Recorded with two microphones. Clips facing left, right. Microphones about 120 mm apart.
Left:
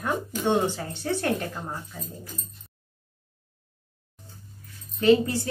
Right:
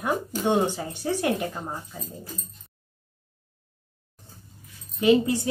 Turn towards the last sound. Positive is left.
turn(degrees=-15)  # may be behind; listen again after turning